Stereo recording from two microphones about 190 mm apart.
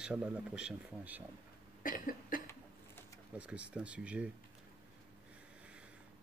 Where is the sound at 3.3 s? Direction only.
5° right (ahead or behind).